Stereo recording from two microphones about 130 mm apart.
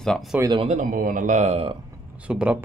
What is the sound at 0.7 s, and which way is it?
A man's voice, 80° right.